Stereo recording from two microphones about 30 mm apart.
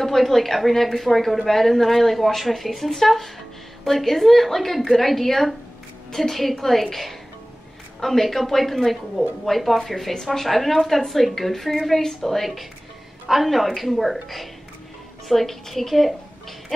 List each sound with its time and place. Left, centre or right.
0.0 s speech: centre
10.1 s a woman's voice: centre
10.4 s a woman's voice: centre